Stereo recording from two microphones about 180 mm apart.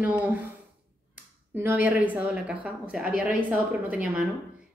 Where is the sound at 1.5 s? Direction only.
10° right (ahead or behind).